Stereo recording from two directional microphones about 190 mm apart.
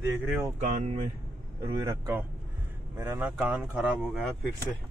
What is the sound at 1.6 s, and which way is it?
Speech, 20° right (ahead or behind).